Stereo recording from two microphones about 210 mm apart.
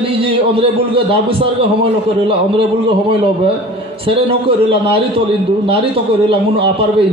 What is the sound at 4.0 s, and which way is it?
A man's voice, 25° right (ahead or behind).